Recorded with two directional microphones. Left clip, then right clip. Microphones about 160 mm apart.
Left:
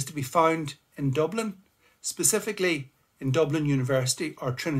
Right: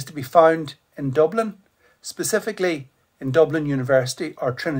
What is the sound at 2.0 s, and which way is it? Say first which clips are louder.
Speech: right 4 dB; 45° left (ahead or behind).